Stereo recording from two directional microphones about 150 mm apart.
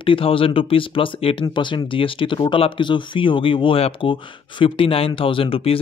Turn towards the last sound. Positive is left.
turn(degrees=40)  # may be behind; listen again after turning